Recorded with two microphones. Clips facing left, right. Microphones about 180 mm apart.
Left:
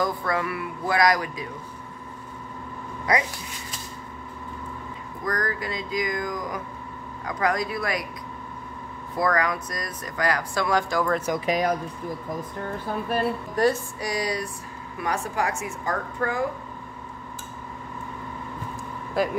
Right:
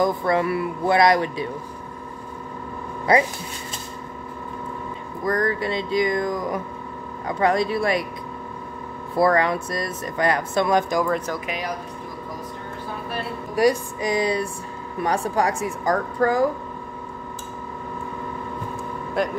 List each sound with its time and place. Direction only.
0.0 s speech: 25° right (ahead or behind)
3.1 s speech: 30° right (ahead or behind)
5.2 s speech: 25° right (ahead or behind)
9.1 s speech: 30° right (ahead or behind)
11.4 s speech: 40° left (ahead or behind)
13.6 s speech: 15° right (ahead or behind); by 16.4 s 35° right (ahead or behind)
19.2 s speech: centre (ahead or behind)